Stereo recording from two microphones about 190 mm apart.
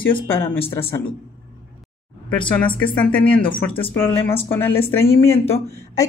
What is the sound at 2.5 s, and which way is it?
Speech, 10° left (ahead or behind).